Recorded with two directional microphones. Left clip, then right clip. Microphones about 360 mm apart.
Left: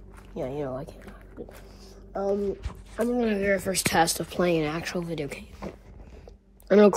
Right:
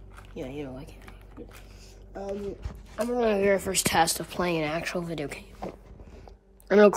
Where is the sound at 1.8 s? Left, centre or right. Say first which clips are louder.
Left 8 dB; centre.